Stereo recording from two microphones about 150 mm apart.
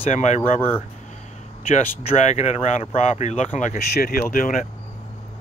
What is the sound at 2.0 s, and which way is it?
Speech, 45° left (ahead or behind).